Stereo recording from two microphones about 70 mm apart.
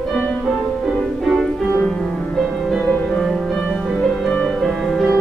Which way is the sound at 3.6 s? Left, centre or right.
Centre.